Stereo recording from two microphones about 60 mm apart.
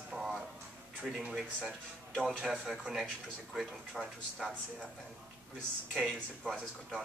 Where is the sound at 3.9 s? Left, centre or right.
Centre.